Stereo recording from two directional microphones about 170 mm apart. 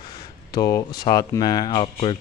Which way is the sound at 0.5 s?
20° left (ahead or behind).